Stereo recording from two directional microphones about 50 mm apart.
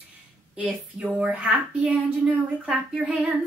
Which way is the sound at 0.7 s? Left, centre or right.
Right.